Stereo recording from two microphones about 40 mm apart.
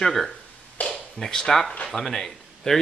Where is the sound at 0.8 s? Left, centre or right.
Left.